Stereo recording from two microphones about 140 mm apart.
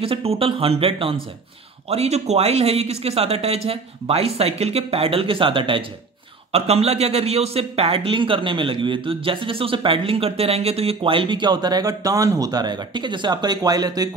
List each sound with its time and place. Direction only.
0.0 s a man's voice: 45° right (ahead or behind); by 14.1 s 25° right (ahead or behind)